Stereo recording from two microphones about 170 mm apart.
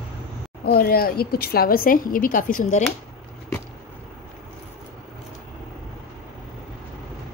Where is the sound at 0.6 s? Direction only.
65° left (ahead or behind).